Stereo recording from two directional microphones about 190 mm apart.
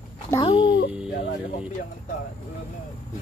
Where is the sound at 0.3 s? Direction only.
25° left (ahead or behind).